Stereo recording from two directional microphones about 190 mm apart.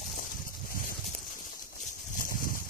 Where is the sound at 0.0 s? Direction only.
45° left (ahead or behind).